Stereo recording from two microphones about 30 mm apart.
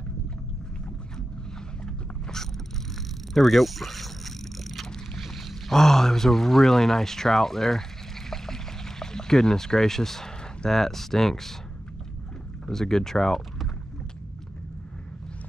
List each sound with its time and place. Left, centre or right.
3.3 s vehicle: centre
5.1 s speech: centre
8.3 s a sound: centre
10.7 s speech: centre
12.6 s speech: centre